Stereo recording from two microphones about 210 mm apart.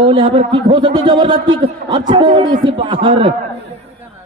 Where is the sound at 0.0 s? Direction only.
25° right (ahead or behind).